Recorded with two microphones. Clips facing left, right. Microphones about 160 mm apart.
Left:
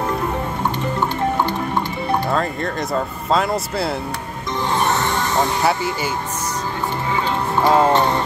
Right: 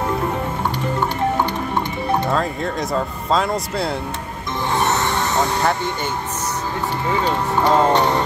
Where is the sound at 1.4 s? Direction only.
20° right (ahead or behind).